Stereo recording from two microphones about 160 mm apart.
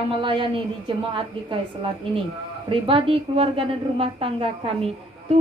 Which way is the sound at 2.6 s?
35° right (ahead or behind).